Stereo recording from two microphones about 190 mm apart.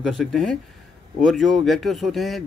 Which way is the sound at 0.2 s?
Centre (ahead or behind).